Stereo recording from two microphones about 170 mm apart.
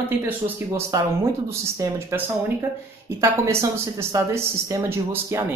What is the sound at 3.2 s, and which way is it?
Speech, 15° right (ahead or behind).